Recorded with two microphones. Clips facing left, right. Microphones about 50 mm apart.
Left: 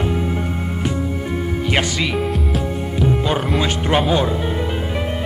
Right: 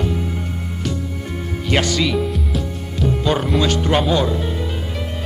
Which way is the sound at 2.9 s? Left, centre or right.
Left.